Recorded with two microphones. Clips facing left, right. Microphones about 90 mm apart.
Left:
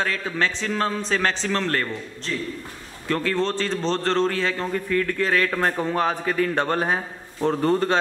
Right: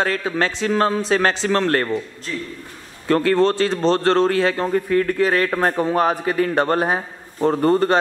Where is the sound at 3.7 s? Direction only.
10° right (ahead or behind).